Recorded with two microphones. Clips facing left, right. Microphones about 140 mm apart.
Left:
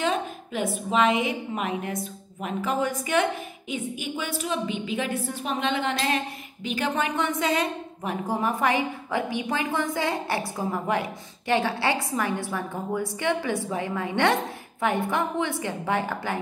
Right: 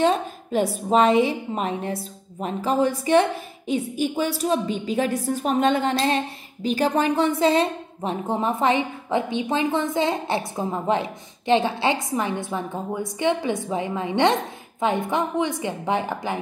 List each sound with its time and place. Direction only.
0.0 s a woman's voice: 35° right (ahead or behind); by 16.3 s 20° right (ahead or behind)